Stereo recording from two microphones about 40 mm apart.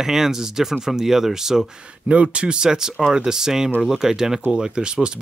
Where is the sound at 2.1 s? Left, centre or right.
Right.